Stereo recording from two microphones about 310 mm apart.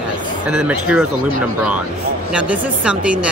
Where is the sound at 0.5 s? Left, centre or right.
Centre.